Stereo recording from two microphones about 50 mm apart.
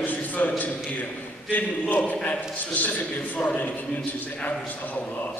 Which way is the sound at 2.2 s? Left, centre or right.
Left.